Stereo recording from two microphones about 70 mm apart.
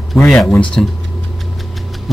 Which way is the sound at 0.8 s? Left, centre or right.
Centre.